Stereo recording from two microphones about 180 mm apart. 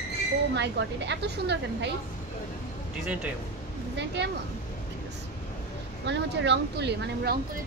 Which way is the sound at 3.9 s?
75° right (ahead or behind).